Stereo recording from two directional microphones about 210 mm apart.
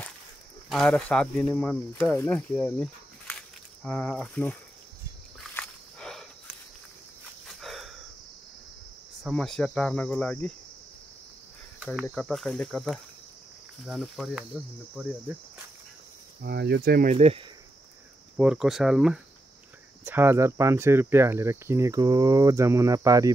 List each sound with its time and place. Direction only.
0.7 s speech: 5° left (ahead or behind)
5.5 s a sound: 5° left (ahead or behind)
7.6 s a sound: centre (ahead or behind)
9.2 s speech: centre (ahead or behind)
11.8 s speech: centre (ahead or behind)
16.4 s speech: 50° right (ahead or behind); by 17.5 s 30° right (ahead or behind)
18.4 s speech: 5° right (ahead or behind)